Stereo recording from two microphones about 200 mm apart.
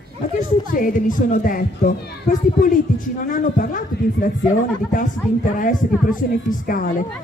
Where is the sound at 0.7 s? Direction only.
40° left (ahead or behind).